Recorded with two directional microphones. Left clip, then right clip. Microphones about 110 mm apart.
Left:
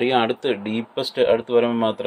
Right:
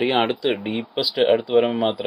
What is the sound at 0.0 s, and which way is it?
Speech, 25° right (ahead or behind).